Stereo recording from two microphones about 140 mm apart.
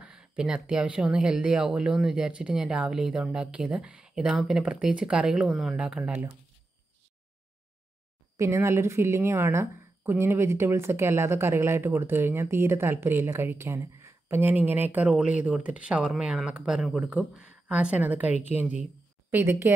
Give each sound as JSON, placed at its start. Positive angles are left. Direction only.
{"t": 0.0, "sound": "speech", "side_deg": -5}
{"t": 8.4, "sound": "a woman's voice", "side_deg": -20}